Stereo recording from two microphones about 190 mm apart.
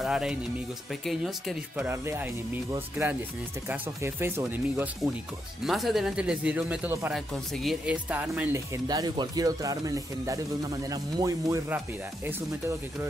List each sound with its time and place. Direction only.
0.0 s speech: 5° right (ahead or behind)
1.9 s speech: 10° right (ahead or behind)
8.8 s speech: 20° right (ahead or behind)